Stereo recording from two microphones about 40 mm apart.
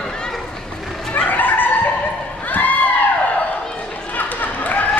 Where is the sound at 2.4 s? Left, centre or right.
Left.